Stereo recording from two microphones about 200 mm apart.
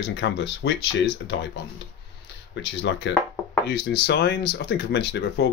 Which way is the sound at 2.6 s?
60° left (ahead or behind).